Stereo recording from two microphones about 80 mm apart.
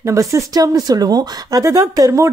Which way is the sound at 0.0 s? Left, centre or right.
Right.